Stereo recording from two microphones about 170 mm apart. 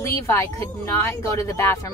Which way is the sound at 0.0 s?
15° left (ahead or behind).